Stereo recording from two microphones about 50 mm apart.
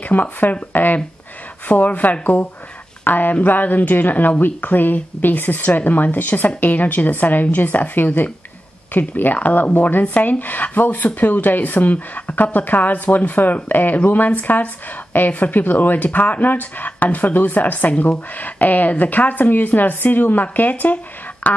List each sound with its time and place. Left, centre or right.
0.1 s speech: left